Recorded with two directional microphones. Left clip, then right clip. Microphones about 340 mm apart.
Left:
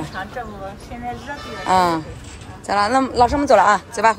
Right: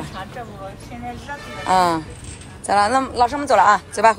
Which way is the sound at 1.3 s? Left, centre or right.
Left.